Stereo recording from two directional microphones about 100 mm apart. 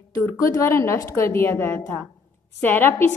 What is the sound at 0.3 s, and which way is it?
A woman's voice, 30° left (ahead or behind).